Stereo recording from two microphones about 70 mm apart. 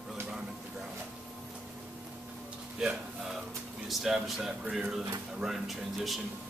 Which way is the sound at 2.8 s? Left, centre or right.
Centre.